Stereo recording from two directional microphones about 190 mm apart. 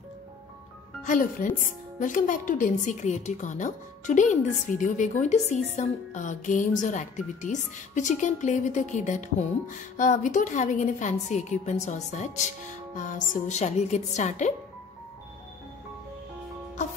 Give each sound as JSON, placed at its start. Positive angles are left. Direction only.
{"t": 1.0, "sound": "a woman's voice", "side_deg": 45}